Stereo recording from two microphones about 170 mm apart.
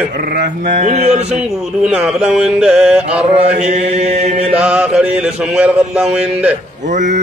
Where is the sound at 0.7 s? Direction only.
45° right (ahead or behind).